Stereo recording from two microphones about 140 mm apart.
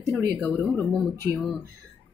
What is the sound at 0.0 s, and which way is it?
Speech, 25° right (ahead or behind).